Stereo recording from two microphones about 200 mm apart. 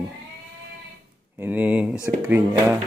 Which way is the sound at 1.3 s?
10° right (ahead or behind).